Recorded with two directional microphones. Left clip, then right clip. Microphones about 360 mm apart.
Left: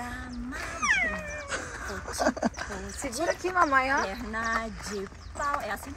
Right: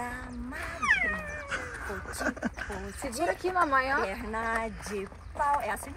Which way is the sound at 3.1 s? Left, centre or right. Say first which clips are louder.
Left 1 dB; centre.